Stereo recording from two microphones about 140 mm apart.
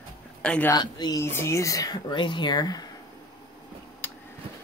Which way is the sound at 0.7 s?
30° left (ahead or behind).